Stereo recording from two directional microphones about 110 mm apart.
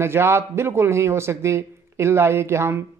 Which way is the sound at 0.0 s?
25° right (ahead or behind).